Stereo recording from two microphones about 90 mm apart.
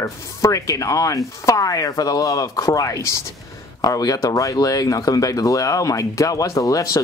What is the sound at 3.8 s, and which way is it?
Speech, 45° left (ahead or behind).